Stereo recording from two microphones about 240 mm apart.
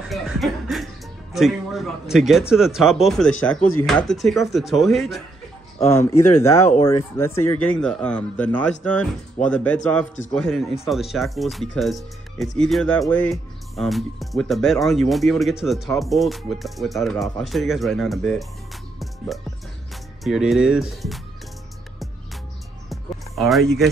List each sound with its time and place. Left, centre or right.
0.0 s chuckle: centre
1.3 s speech: centre
5.9 s speech: centre
6.6 s speech: left
6.9 s speech: centre
18.9 s music: centre
20.2 s speech: centre
22.8 s music: centre